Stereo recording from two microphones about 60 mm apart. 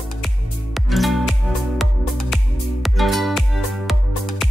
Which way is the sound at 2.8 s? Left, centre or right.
Centre.